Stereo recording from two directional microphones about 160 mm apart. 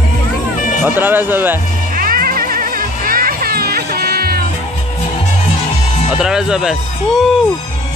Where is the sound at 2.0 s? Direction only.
65° right (ahead or behind).